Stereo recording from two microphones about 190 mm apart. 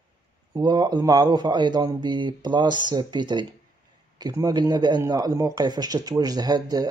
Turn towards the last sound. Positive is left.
turn(degrees=-20)  # may be behind; listen again after turning